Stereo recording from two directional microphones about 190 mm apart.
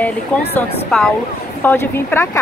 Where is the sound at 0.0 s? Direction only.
10° left (ahead or behind).